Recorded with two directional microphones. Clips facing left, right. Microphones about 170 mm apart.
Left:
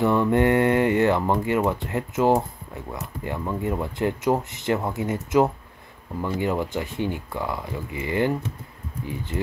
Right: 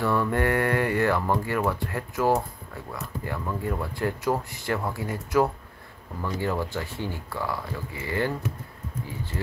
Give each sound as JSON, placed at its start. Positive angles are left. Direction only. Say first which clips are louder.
{"t": 0.0, "sound": "speech", "louder": "left 5 dB", "side_deg": 20}